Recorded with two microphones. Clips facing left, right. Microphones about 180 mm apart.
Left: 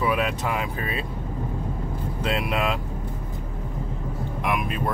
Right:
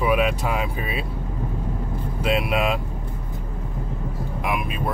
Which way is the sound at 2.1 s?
10° right (ahead or behind).